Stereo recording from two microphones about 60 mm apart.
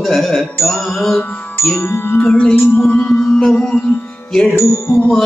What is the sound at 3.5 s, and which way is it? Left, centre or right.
Music, centre.